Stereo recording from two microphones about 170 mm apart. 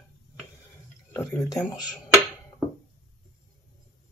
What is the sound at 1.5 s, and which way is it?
Speech, 20° left (ahead or behind).